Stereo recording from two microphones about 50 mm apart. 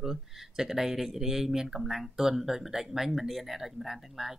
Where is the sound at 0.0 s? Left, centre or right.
Centre.